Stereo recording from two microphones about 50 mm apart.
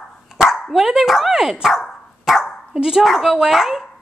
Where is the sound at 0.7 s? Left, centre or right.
Centre.